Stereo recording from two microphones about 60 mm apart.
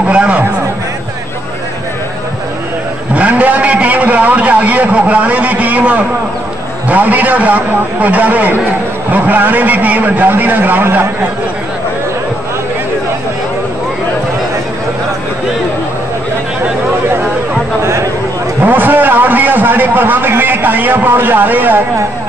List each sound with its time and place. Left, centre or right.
0.1 s a sound: centre
3.2 s vehicle: right
6.9 s a man's voice: right
18.6 s a man's voice: right